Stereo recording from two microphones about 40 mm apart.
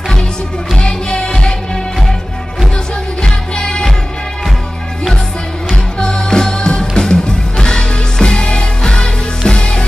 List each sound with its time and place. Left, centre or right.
0.7 s music: left
3.2 s music: centre
5.9 s music: centre